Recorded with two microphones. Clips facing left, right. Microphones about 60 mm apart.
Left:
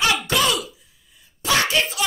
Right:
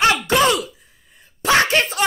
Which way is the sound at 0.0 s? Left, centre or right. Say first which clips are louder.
Right 4 dB; right.